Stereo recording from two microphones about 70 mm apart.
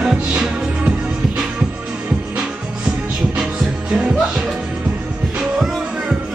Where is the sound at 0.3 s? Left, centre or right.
Centre.